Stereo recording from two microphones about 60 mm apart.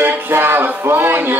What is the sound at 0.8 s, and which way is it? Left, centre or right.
Speech, right.